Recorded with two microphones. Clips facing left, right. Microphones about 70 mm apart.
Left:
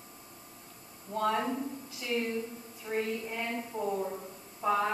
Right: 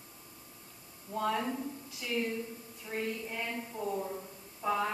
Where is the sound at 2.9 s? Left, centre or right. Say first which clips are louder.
Left 3 dB; centre.